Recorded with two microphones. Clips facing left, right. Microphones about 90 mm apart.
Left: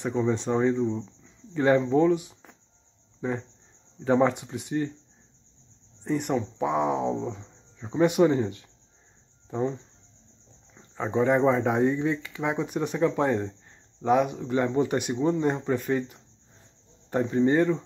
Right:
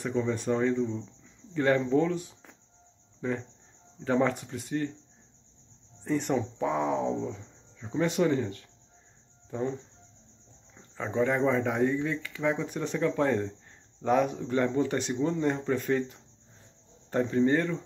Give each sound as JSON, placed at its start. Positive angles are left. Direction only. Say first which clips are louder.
{"t": 0.0, "sound": "a man's voice", "louder": "left 3 dB", "side_deg": 20}
{"t": 6.0, "sound": "a man's voice", "louder": "left 1 dB", "side_deg": 5}
{"t": 11.0, "sound": "speech", "louder": "left 4 dB", "side_deg": 20}
{"t": 14.0, "sound": "a man's voice", "louder": "left 3 dB", "side_deg": 5}
{"t": 15.7, "sound": "a man's voice", "louder": "left 1 dB", "side_deg": 5}